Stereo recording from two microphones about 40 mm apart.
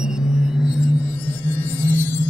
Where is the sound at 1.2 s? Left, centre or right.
Left.